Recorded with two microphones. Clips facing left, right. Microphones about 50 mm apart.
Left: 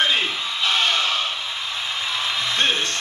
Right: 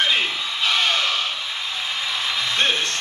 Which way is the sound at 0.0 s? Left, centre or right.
Left.